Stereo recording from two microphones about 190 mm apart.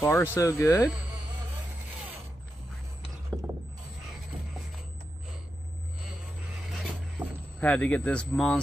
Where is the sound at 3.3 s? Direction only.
5° left (ahead or behind).